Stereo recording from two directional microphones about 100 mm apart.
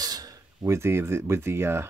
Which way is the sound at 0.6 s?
25° right (ahead or behind).